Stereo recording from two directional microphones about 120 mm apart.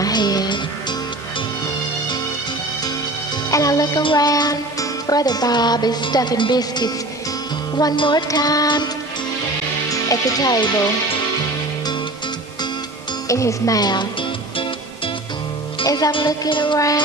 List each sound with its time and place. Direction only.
0.0 s music: 35° left (ahead or behind)
3.4 s music: 30° left (ahead or behind)
4.0 s music: 45° left (ahead or behind)
4.3 s speech: 30° left (ahead or behind)
9.8 s speech: 30° left (ahead or behind)
13.3 s speech: 25° left (ahead or behind)
15.8 s music: 30° left (ahead or behind)
16.3 s music: 40° left (ahead or behind)
16.7 s speech: 30° left (ahead or behind)